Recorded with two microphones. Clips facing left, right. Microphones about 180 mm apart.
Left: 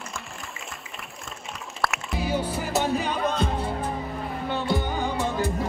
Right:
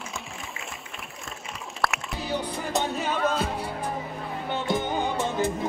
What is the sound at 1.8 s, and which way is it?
Music, centre (ahead or behind).